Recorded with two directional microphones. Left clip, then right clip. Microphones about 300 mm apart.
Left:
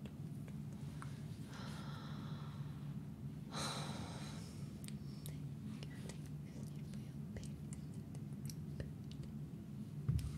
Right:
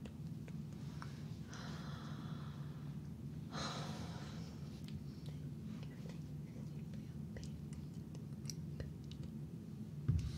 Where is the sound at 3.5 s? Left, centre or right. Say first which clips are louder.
Left 1 dB; centre.